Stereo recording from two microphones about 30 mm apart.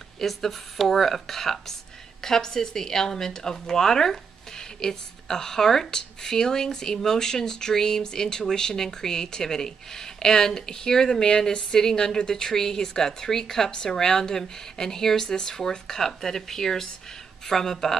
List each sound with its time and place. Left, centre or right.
0.2 s a woman's voice: centre
13.7 s speech: left
13.9 s a woman's voice: centre